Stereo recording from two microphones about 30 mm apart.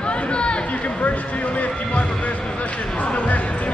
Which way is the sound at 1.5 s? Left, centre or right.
Left.